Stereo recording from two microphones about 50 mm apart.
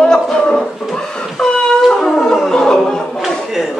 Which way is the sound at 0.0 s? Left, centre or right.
Centre.